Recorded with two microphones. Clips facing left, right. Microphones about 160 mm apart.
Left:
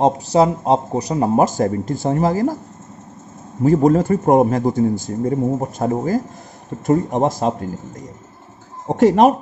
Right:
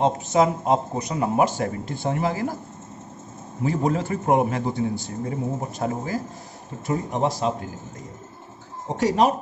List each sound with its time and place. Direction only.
0.0 s speech: 35° left (ahead or behind)
3.6 s speech: 45° left (ahead or behind)
8.8 s speech: 55° left (ahead or behind)